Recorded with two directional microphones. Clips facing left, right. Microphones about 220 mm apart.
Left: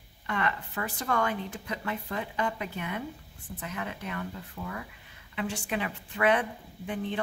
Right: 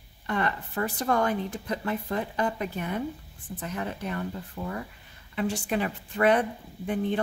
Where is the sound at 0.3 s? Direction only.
35° right (ahead or behind).